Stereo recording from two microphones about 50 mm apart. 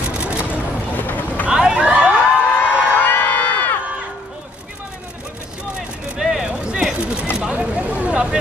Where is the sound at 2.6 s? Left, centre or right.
Left.